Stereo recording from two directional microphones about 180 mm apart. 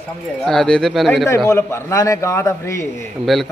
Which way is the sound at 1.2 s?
15° left (ahead or behind).